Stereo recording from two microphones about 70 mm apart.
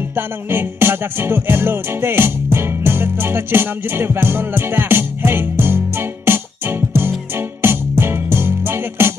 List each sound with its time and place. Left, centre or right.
0.1 s music: right